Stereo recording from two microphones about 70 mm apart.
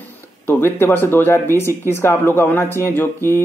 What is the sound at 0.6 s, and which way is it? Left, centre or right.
Speech, left.